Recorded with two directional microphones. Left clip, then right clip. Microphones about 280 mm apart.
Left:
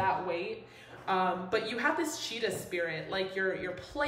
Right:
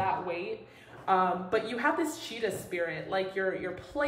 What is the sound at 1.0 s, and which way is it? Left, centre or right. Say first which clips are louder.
A woman's voice: right 3 dB; centre.